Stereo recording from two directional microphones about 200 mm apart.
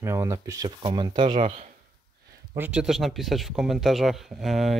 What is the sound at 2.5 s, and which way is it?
Speech, 10° right (ahead or behind).